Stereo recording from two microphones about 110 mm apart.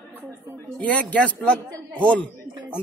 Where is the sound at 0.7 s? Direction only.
10° left (ahead or behind).